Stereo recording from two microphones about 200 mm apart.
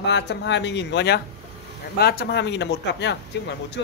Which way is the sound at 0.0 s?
60° left (ahead or behind).